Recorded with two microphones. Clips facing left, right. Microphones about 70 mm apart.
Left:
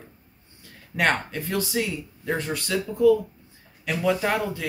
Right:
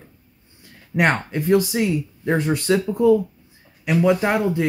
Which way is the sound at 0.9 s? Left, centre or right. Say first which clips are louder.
Right 4 dB; centre.